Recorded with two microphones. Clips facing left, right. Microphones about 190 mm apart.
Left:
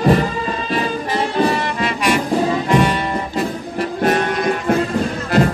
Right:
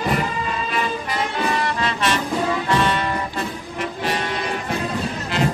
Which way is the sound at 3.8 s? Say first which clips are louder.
Left 8 dB; 50° left (ahead or behind).